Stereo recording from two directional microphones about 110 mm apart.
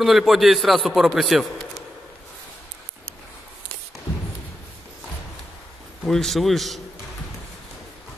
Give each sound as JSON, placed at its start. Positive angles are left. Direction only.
{"t": 0.0, "sound": "a man's voice", "side_deg": 0}
{"t": 6.0, "sound": "a man's voice", "side_deg": 5}